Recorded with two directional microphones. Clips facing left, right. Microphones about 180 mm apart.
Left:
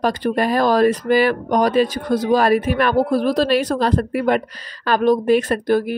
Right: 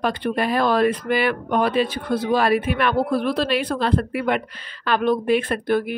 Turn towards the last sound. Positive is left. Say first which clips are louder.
# left 3 dB
turn(degrees=40)  # may be behind; listen again after turning